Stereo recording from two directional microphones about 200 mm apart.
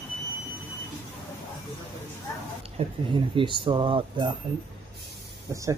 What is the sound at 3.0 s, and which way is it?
Speech, 25° right (ahead or behind).